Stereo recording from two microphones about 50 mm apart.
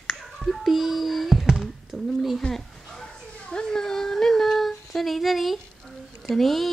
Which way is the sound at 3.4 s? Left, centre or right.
Centre.